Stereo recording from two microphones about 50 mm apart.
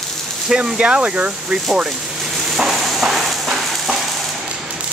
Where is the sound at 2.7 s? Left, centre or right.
Centre.